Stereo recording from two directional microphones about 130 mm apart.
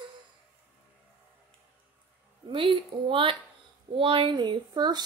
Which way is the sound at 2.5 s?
40° right (ahead or behind).